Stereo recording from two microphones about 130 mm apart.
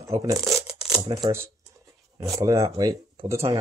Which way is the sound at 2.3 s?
25° right (ahead or behind).